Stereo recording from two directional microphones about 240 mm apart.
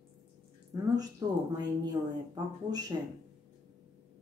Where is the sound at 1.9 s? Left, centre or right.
Centre.